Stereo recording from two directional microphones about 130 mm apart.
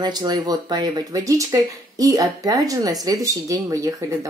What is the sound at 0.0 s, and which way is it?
Speech, 35° right (ahead or behind).